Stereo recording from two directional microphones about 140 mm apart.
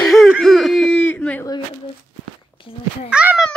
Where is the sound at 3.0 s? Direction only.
5° right (ahead or behind).